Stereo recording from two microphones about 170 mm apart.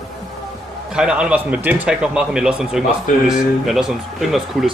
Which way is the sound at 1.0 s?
5° right (ahead or behind).